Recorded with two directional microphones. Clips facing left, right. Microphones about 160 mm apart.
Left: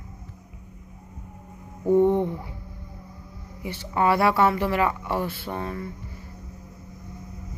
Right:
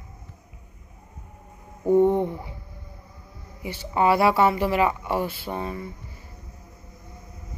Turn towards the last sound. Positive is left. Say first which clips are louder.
# even
turn(degrees=-10)  # may be behind; listen again after turning